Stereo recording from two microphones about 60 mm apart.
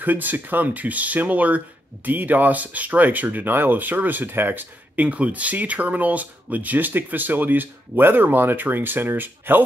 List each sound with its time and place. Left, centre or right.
0.0 s speech: right